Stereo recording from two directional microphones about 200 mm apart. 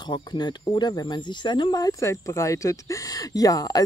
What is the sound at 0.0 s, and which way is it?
Speech, 20° left (ahead or behind).